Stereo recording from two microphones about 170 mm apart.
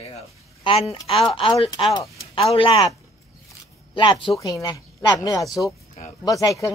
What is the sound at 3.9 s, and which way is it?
Speech, 30° left (ahead or behind).